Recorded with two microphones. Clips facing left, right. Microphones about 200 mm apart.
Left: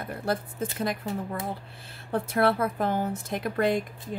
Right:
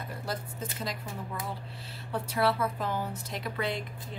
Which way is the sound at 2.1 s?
55° left (ahead or behind).